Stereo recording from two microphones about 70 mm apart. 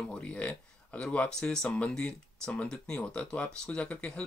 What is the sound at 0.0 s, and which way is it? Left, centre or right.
Speech, centre.